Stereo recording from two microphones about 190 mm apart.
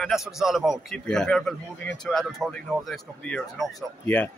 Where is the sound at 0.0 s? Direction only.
Centre (ahead or behind).